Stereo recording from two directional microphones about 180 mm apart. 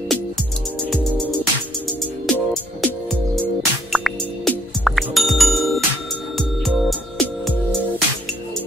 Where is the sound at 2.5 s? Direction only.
Centre (ahead or behind).